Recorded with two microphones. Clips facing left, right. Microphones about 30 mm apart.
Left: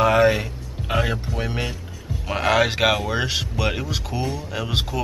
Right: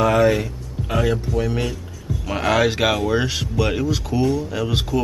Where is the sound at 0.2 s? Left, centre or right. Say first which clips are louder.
Right 1 dB; left.